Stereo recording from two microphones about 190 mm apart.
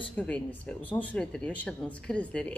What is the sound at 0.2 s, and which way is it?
A woman's voice, 5° left (ahead or behind).